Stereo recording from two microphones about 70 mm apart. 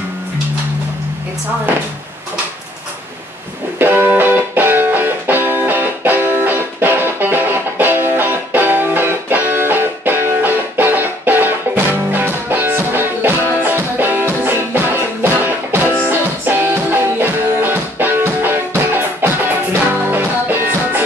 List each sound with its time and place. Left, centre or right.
3.7 s music: right